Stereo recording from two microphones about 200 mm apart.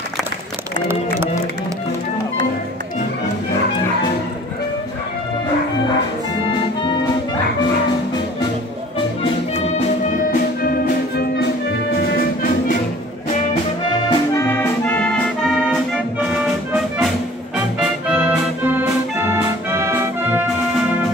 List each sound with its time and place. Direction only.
11.1 s music: 55° left (ahead or behind)
13.8 s music: 20° left (ahead or behind); by 16.0 s centre (ahead or behind)
18.1 s music: 10° right (ahead or behind)